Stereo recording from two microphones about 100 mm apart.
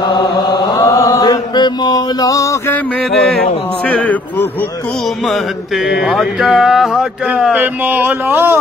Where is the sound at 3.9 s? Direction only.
15° left (ahead or behind).